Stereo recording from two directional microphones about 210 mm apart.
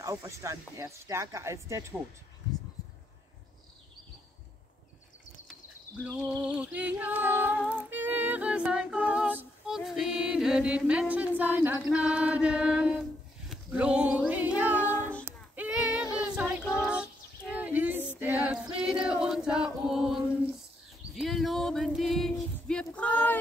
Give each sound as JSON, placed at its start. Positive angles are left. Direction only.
{"t": 0.0, "sound": "speech", "side_deg": -15}
{"t": 6.0, "sound": "speech", "side_deg": -5}
{"t": 7.7, "sound": "music", "side_deg": -10}
{"t": 13.5, "sound": "a sound", "side_deg": -5}
{"t": 15.0, "sound": "child singing", "side_deg": 5}
{"t": 15.5, "sound": "child singing", "side_deg": -5}
{"t": 16.6, "sound": "child singing", "side_deg": 10}
{"t": 16.9, "sound": "a sound", "side_deg": -5}
{"t": 18.2, "sound": "choir", "side_deg": -10}
{"t": 21.1, "sound": "a sound", "side_deg": 0}